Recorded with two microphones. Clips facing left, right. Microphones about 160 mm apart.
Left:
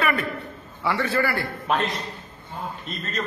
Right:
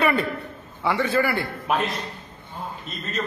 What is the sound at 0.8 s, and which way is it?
Speech, 20° right (ahead or behind).